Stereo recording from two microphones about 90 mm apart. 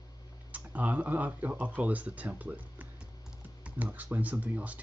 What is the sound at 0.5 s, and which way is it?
Speech, 15° right (ahead or behind).